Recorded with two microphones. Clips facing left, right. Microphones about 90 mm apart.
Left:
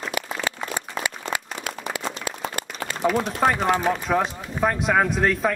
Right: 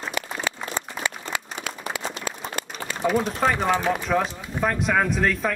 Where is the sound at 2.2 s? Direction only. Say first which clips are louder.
Left 1 dB; 55° left (ahead or behind).